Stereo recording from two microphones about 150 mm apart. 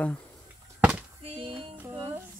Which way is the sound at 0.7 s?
10° right (ahead or behind).